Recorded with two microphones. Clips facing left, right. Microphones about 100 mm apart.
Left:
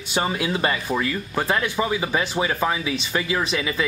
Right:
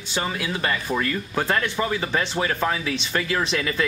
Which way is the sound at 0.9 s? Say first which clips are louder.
Left 1 dB; 5° left (ahead or behind).